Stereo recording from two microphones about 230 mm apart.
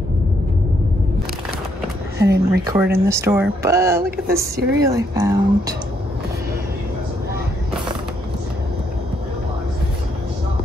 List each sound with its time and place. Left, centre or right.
2.2 s speech: right
2.6 s speech: centre
4.4 s speech: right
4.8 s speech: centre